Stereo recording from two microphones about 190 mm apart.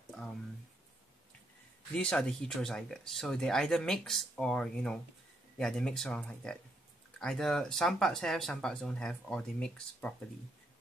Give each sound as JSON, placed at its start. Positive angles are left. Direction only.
{"t": 2.0, "sound": "speech", "side_deg": 5}